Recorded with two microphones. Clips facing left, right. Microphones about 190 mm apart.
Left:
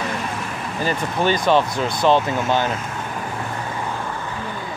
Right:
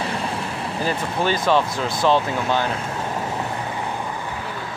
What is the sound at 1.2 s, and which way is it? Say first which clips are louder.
Speech: left 2 dB; 5° right (ahead or behind).